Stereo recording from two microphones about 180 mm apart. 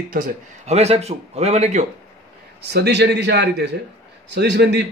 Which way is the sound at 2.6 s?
65° right (ahead or behind).